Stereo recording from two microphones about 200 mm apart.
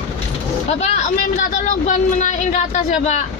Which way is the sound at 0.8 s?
35° left (ahead or behind).